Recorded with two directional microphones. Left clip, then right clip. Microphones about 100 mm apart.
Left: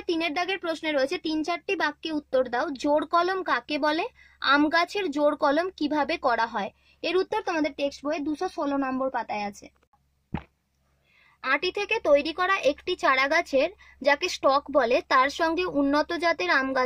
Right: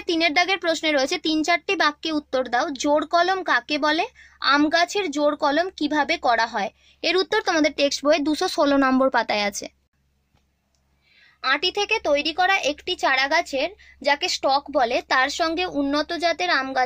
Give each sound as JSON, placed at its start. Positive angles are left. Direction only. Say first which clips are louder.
{"t": 0.0, "sound": "speech", "louder": "right 7 dB", "side_deg": 10}
{"t": 8.1, "sound": "a woman's voice", "louder": "right 9 dB", "side_deg": -30}
{"t": 11.4, "sound": "speech", "louder": "right 4 dB", "side_deg": 40}